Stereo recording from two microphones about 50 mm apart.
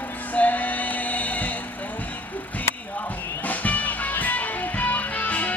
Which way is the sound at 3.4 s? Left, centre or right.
Left.